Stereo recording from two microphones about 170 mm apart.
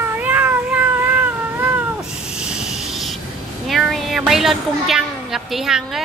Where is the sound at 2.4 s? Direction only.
5° right (ahead or behind).